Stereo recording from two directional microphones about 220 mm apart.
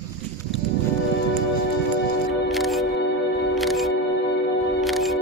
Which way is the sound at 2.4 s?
Centre (ahead or behind).